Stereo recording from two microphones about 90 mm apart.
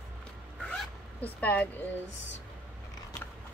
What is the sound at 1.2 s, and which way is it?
Speech, 15° left (ahead or behind).